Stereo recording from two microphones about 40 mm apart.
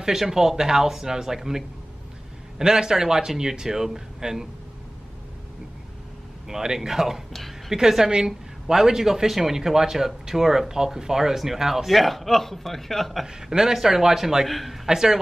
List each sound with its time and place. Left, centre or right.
0.0 s speech: centre
2.6 s speech: centre
6.4 s speech: centre
7.3 s a sound: centre
7.7 s speech: centre
13.2 s a man's voice: centre
14.9 s speech: centre